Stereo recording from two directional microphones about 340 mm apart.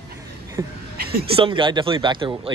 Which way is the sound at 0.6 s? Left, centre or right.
Centre.